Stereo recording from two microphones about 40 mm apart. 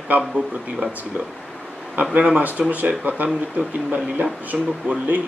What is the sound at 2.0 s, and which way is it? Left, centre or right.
Speech, right.